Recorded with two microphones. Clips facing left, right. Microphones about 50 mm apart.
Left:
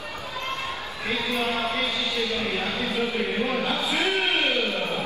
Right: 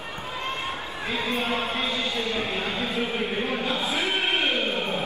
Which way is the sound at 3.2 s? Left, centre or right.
Left.